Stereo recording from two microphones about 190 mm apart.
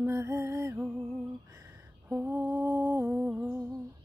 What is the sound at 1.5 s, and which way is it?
Lullaby, 15° right (ahead or behind).